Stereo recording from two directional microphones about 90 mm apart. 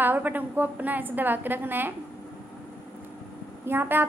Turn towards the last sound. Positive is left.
turn(degrees=-25)  # may be behind; listen again after turning